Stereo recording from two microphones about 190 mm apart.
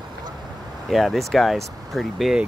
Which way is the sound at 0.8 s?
Centre (ahead or behind).